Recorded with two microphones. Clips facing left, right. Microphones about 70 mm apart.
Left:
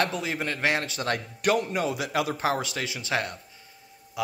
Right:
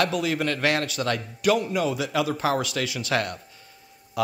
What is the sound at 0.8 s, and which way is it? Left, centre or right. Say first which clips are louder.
Speech: right 2 dB; left.